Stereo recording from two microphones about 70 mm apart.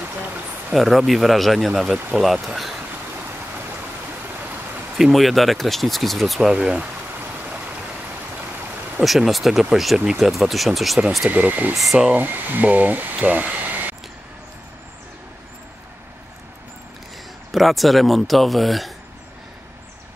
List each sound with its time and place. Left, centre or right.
0.7 s speech: centre
4.9 s speech: centre
6.5 s speech: centre
9.0 s speech: centre
11.2 s speech: right
11.7 s speech: centre
12.1 s speech: right
17.5 s speech: centre